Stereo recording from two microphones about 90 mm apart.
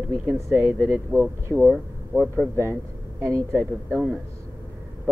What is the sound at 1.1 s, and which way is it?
Speech, 30° right (ahead or behind).